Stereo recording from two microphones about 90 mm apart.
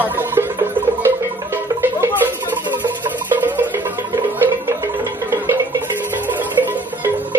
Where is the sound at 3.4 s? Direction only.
20° right (ahead or behind).